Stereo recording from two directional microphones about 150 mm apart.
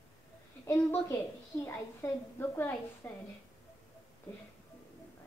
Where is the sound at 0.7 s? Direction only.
20° left (ahead or behind).